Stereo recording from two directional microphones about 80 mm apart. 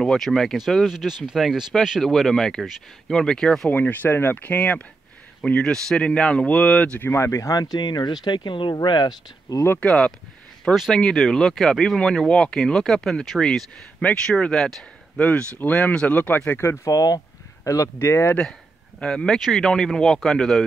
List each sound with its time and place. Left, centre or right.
0.0 s speech: centre
3.7 s speech: left
7.0 s speech: left
9.8 s speech: centre
10.6 s speech: centre
15.1 s speech: centre
16.9 s speech: left
17.9 s speech: left
18.9 s speech: centre